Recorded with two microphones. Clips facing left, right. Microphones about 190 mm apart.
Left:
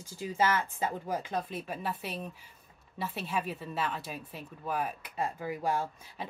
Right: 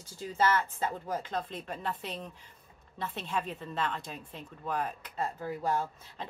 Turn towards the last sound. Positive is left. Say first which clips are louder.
# even
turn(degrees=10)  # may be behind; listen again after turning